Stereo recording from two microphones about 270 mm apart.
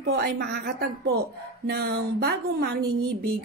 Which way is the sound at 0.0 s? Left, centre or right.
Right.